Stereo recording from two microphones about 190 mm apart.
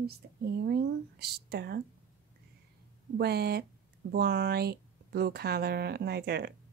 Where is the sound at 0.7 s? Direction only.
60° right (ahead or behind).